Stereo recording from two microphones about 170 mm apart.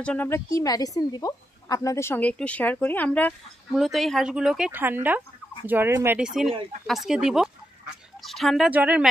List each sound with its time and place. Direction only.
0.0 s a woman's voice: 10° left (ahead or behind); by 6.2 s 15° right (ahead or behind)
6.2 s speech: centre (ahead or behind)